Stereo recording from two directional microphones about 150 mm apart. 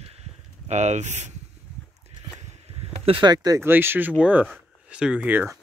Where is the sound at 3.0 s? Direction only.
30° right (ahead or behind); by 5.6 s 10° right (ahead or behind).